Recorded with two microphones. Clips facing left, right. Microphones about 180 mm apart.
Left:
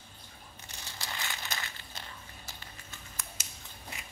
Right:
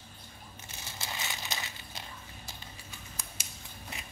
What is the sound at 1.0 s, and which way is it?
Crumpling, 20° right (ahead or behind).